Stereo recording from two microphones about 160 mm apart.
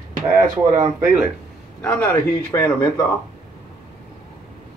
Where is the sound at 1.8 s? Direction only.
10° left (ahead or behind).